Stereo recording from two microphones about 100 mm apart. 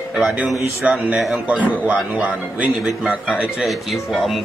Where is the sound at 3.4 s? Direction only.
Centre (ahead or behind).